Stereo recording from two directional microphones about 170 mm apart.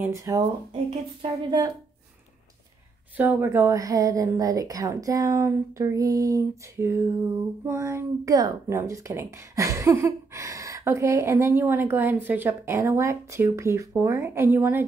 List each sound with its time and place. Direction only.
0.0 s a woman's voice: 20° right (ahead or behind)
0.8 s a woman's voice: 30° right (ahead or behind)
3.2 s a woman's voice: 10° right (ahead or behind)